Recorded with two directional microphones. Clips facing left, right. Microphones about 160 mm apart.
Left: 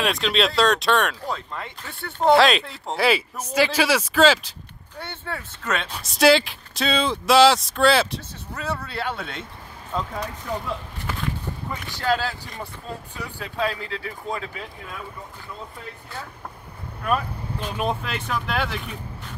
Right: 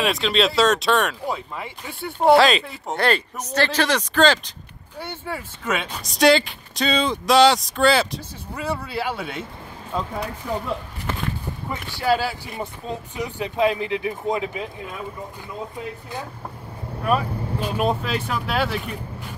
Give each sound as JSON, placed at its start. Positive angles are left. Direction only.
{"t": 0.0, "sound": "speech", "side_deg": 0}
{"t": 4.9, "sound": "speech", "side_deg": -10}
{"t": 5.9, "sound": "speech", "side_deg": 0}
{"t": 8.5, "sound": "speech", "side_deg": -10}
{"t": 11.7, "sound": "speech", "side_deg": -10}
{"t": 17.0, "sound": "speech", "side_deg": -10}